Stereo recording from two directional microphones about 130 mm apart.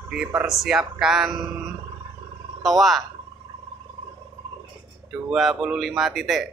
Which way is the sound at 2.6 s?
Centre (ahead or behind).